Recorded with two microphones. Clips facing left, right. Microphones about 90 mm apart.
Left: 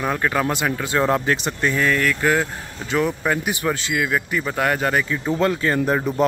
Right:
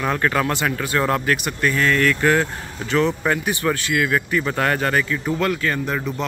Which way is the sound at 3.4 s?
15° left (ahead or behind).